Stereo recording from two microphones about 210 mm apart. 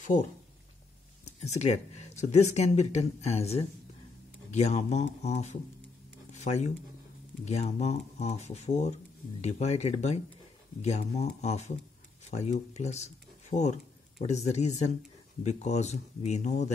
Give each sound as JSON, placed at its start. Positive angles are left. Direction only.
{"t": 1.2, "sound": "speech", "side_deg": 30}